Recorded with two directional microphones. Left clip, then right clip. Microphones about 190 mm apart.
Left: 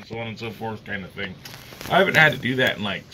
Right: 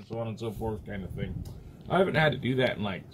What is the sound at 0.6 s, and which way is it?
Speech, 5° right (ahead or behind).